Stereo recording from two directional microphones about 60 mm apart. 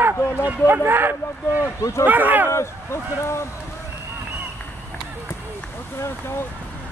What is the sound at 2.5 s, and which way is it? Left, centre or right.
Speech, left.